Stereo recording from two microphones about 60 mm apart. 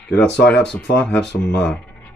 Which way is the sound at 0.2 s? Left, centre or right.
Centre.